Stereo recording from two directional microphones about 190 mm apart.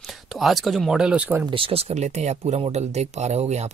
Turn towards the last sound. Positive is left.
turn(degrees=-35)  # may be behind; listen again after turning